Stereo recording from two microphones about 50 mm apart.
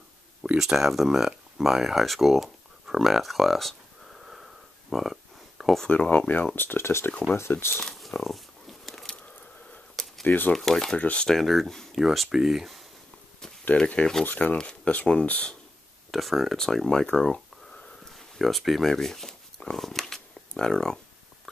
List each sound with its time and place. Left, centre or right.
0.6 s a sound: centre
5.9 s speech: left
7.8 s a sound: centre
10.2 s speech: left
10.5 s speech: centre
11.0 s speech: left
11.2 s speech: centre
13.7 s speech: left
14.2 s speech: left
16.1 s speech: centre
16.5 s speech: centre